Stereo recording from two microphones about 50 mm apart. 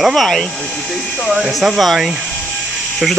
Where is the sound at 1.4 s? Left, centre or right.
Centre.